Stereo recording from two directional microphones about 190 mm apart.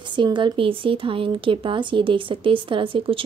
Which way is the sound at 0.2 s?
25° right (ahead or behind).